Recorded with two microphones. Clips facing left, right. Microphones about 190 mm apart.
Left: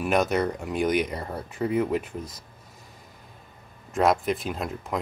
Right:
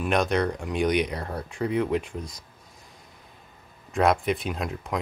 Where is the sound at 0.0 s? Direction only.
5° left (ahead or behind).